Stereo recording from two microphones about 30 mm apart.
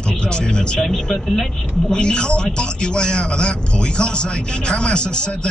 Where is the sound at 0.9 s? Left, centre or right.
Centre.